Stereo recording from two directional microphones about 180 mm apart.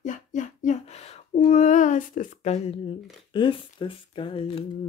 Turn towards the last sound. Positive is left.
turn(degrees=30)  # may be behind; listen again after turning